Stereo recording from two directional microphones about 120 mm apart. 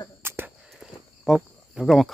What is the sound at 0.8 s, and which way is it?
Cricket, 5° right (ahead or behind).